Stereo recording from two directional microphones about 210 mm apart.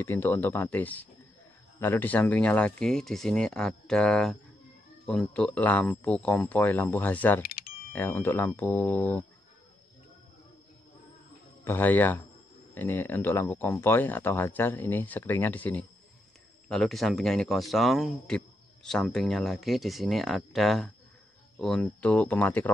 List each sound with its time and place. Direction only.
0.0 s speech: 10° left (ahead or behind)
7.4 s a sound: 45° left (ahead or behind)
7.9 s speech: 10° left (ahead or behind)
11.6 s speech: 10° left (ahead or behind)